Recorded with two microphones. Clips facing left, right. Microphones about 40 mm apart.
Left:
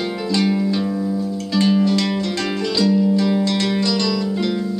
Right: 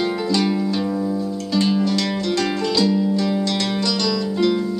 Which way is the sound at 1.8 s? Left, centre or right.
Left.